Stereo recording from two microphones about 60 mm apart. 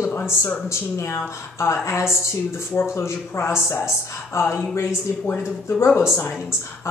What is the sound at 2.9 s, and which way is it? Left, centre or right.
A woman's voice, left.